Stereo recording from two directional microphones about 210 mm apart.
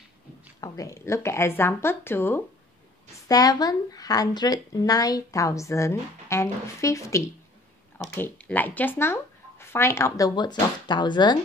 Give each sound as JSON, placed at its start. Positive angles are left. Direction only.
{"t": 0.6, "sound": "speech", "side_deg": 15}